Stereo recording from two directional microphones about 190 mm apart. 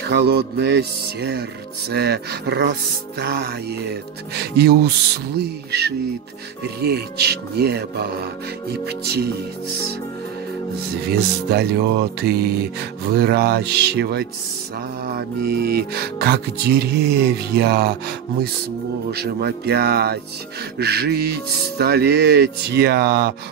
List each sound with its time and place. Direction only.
0.0 s music: 60° right (ahead or behind)
11.1 s music: 55° right (ahead or behind)